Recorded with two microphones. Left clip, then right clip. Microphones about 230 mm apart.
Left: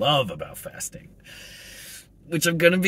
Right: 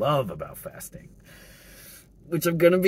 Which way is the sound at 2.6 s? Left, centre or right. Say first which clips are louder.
Even; centre.